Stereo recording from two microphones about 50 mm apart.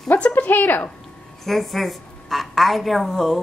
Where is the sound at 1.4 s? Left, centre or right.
Centre.